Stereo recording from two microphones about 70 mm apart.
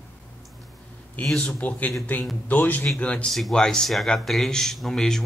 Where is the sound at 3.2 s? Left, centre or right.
Centre.